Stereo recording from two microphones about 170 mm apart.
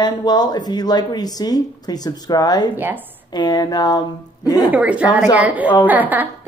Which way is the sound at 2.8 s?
10° right (ahead or behind).